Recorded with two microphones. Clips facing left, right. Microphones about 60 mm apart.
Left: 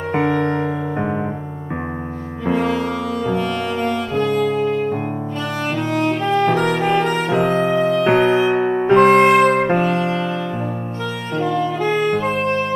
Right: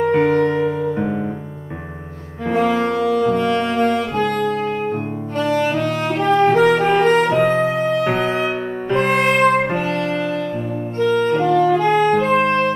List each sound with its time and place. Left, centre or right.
0.1 s music: left
3.5 s music: right
5.8 s music: right
6.5 s music: centre
7.3 s music: left
8.9 s music: left
9.3 s music: centre
11.0 s music: right